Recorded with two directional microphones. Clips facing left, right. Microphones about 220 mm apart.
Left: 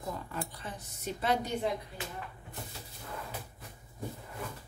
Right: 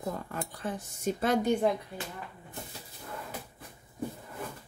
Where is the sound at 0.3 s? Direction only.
50° right (ahead or behind).